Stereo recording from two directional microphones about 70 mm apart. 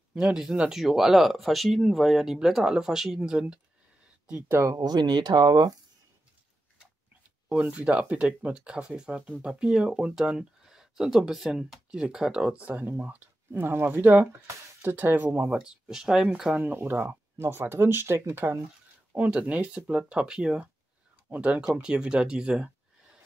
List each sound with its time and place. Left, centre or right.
0.1 s speech: centre
4.5 s speech: right
4.7 s speech: right
7.7 s speech: centre
15.6 s speech: centre
16.5 s speech: right
17.0 s speech: right
19.1 s speech: right
21.3 s speech: centre